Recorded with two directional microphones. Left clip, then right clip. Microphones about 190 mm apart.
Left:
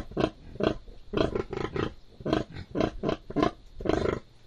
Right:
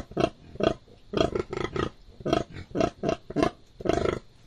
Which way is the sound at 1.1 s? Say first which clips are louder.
Right 2 dB; 25° right (ahead or behind).